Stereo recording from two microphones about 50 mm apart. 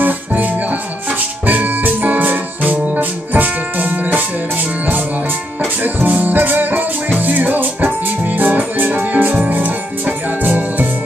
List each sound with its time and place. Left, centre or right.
0.0 s music: right
5.8 s music: right